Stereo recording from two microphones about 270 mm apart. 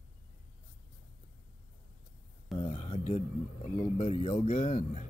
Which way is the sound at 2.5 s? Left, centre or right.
Centre.